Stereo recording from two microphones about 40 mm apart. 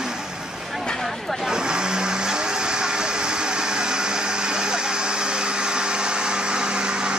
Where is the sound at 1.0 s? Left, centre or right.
Centre.